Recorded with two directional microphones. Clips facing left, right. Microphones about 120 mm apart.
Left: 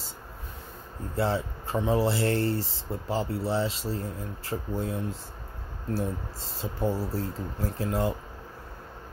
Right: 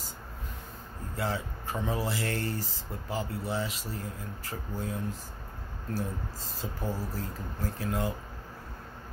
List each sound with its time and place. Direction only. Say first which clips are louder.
1.1 s speech: left 6 dB; 30° left (ahead or behind)
5.9 s speech: left 3 dB; 25° left (ahead or behind)